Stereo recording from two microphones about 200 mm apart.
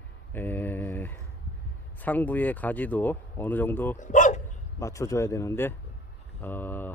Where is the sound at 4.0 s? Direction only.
40° left (ahead or behind).